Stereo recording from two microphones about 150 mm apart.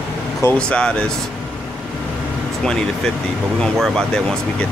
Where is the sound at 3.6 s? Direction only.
5° left (ahead or behind).